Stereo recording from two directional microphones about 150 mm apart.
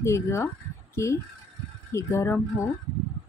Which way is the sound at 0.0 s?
20° left (ahead or behind).